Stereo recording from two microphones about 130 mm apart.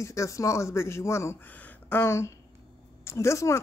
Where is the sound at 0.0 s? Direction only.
25° left (ahead or behind).